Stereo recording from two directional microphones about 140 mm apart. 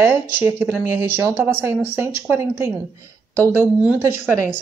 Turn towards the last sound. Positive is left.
turn(degrees=-15)  # may be behind; listen again after turning